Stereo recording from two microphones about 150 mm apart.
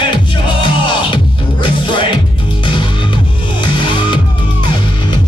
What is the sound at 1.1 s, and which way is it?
Music, 35° left (ahead or behind).